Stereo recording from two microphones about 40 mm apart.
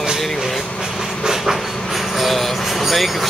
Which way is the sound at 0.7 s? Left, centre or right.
Centre.